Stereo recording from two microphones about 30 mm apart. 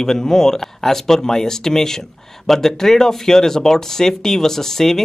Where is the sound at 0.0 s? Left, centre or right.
Centre.